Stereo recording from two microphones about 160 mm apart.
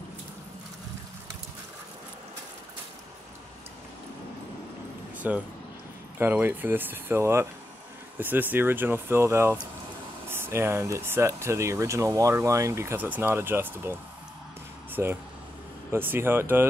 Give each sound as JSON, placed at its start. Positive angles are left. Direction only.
{"t": 5.2, "sound": "speech", "side_deg": -10}
{"t": 14.9, "sound": "a sound", "side_deg": -15}
{"t": 15.9, "sound": "speech", "side_deg": -15}